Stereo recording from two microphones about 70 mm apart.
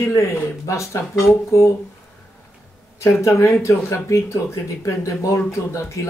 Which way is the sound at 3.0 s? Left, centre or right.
Left.